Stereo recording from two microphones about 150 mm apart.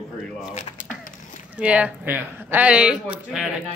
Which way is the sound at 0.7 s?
60° left (ahead or behind).